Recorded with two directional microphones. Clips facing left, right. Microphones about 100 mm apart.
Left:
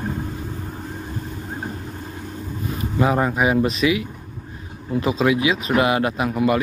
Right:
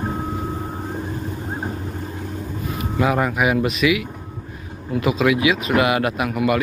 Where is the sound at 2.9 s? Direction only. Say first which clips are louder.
Even; 25° left (ahead or behind).